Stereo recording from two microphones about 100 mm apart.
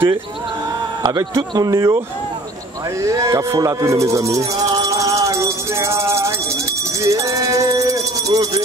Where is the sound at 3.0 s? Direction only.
30° right (ahead or behind).